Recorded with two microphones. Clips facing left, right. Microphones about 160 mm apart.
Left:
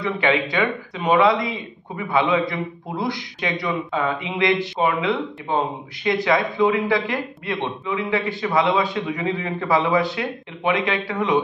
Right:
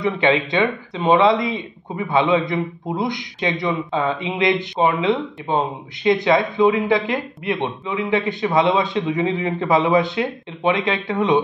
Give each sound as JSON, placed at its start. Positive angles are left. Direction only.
{"t": 0.0, "sound": "a man's voice", "side_deg": -25}